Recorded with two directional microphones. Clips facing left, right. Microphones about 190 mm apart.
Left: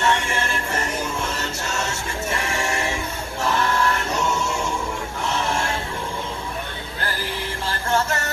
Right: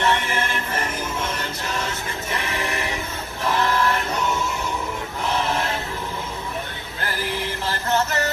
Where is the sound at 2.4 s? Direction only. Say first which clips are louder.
Left 2 dB; 25° left (ahead or behind).